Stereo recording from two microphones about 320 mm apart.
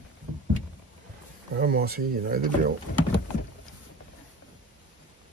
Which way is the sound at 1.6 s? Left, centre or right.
Right.